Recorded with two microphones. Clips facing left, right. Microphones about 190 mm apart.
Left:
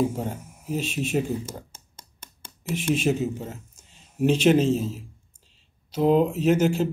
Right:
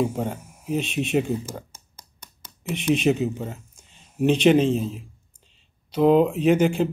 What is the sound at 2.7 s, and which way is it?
Speech, 65° right (ahead or behind).